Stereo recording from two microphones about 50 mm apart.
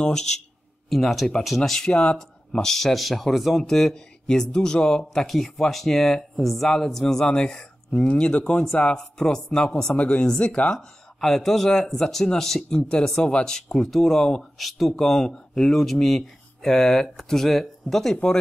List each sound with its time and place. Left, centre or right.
0.8 s speech: centre
1.9 s speech: centre
2.6 s speech: centre
11.1 s speech: centre